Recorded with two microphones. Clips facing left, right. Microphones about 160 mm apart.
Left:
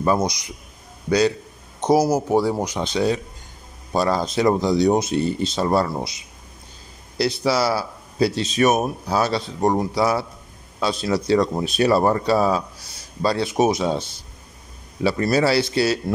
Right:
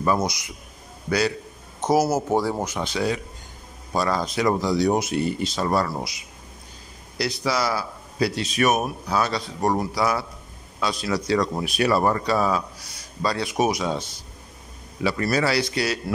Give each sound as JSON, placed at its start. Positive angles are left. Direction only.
{"t": 0.0, "sound": "speech", "side_deg": 25}
{"t": 1.8, "sound": "speech", "side_deg": 15}
{"t": 7.2, "sound": "speech", "side_deg": 30}
{"t": 15.0, "sound": "speech", "side_deg": 30}